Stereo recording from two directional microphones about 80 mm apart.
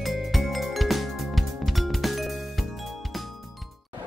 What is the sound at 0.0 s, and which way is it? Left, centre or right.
Music, centre.